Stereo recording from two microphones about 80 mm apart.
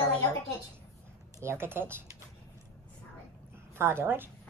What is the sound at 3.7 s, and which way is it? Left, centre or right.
Speech, right.